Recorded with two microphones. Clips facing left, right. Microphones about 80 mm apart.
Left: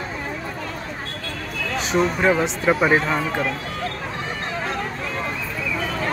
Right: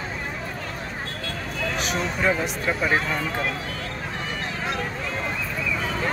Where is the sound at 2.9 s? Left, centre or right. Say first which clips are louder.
Left 5 dB; left.